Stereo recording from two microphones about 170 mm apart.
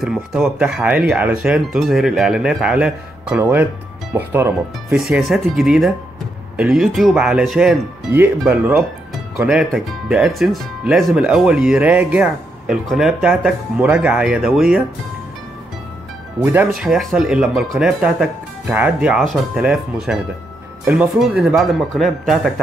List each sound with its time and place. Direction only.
0.0 s speech: 5° right (ahead or behind)
4.9 s speech: 5° right (ahead or behind)
16.3 s speech: 10° right (ahead or behind)